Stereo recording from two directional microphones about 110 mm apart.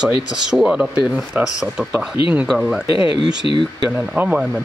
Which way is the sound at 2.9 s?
55° left (ahead or behind).